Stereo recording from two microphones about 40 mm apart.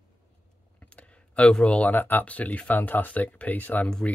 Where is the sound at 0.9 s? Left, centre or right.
Left.